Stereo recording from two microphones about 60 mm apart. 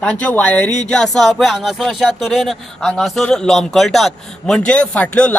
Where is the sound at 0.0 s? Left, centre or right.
Centre.